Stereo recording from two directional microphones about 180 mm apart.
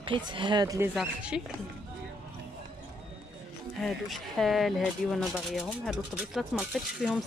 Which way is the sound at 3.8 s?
Centre (ahead or behind).